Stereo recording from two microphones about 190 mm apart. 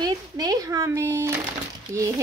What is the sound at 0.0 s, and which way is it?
Speech, 20° right (ahead or behind).